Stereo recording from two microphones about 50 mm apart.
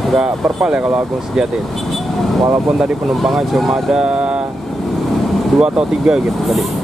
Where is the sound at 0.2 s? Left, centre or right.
Right.